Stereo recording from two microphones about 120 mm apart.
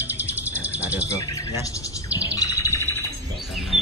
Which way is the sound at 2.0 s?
30° left (ahead or behind).